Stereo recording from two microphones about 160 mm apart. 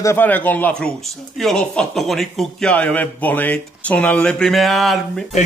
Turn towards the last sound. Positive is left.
turn(degrees=0)  # may be behind; listen again after turning